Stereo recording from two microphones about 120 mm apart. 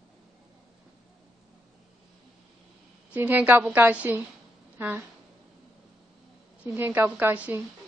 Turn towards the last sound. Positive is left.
turn(degrees=-15)  # may be behind; listen again after turning